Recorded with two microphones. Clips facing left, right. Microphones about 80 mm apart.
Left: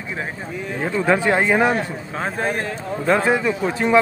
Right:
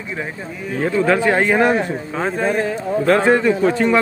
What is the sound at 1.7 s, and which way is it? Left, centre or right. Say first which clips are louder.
A man's voice: right 4 dB; centre.